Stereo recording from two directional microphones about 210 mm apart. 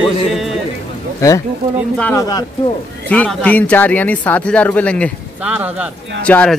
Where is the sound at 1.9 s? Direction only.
10° left (ahead or behind).